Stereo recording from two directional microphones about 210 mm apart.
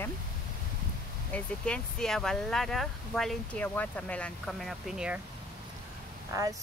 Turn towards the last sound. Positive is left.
turn(degrees=-15)  # may be behind; listen again after turning